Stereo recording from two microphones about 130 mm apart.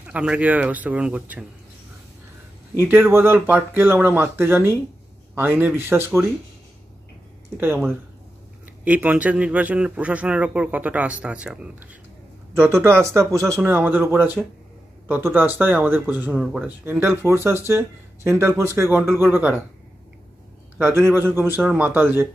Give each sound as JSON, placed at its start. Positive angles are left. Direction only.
{"t": 0.0, "sound": "a man's voice", "side_deg": -10}
{"t": 2.8, "sound": "a man's voice", "side_deg": -15}
{"t": 7.6, "sound": "a man's voice", "side_deg": -15}
{"t": 12.5, "sound": "a man's voice", "side_deg": -20}
{"t": 20.7, "sound": "a man's voice", "side_deg": -15}